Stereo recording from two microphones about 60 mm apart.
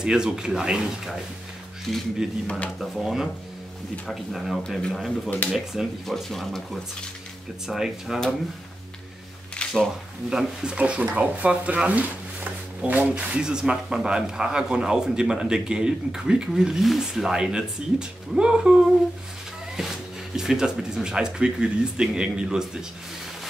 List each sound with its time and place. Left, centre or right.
0.0 s speech: centre
6.0 s speech: centre
7.6 s speech: centre
9.6 s a sound: centre
10.3 s speech: centre